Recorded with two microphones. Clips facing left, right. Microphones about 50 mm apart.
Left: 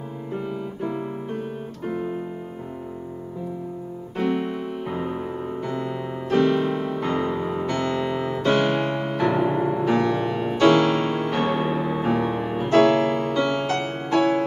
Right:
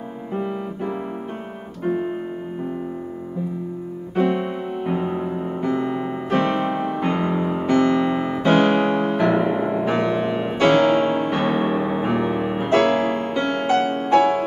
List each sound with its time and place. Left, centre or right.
0.3 s music: centre
4.2 s music: right
8.1 s piano: centre
9.3 s music: centre